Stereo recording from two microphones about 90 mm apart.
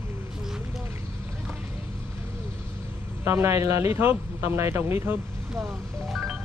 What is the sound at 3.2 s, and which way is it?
Speech, 30° right (ahead or behind).